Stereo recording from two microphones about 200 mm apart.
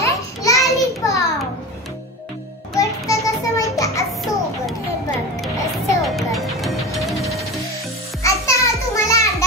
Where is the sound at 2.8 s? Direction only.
15° left (ahead or behind).